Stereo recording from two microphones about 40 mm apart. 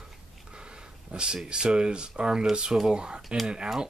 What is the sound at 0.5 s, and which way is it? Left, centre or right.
Speech, right.